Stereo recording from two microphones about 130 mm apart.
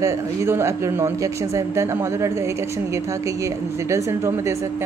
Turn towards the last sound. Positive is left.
turn(degrees=-20)  # may be behind; listen again after turning